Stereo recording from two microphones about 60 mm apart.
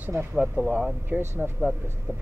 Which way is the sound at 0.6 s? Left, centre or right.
Right.